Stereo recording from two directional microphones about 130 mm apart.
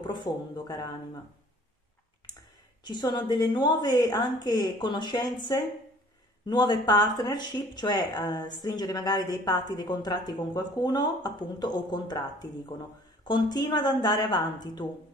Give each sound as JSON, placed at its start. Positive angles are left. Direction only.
{"t": 0.0, "sound": "speech", "side_deg": 35}
{"t": 2.8, "sound": "speech", "side_deg": 35}